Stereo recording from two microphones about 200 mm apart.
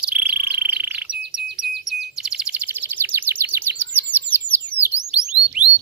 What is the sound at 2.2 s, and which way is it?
Bird vocalization, 5° right (ahead or behind).